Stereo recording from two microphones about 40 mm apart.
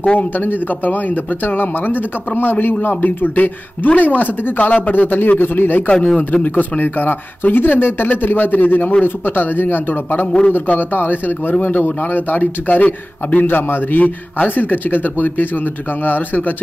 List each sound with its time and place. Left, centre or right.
0.0 s speech: left
0.4 s a man's voice: left
5.9 s a man's voice: left
12.0 s a man's voice: left
13.5 s a man's voice: left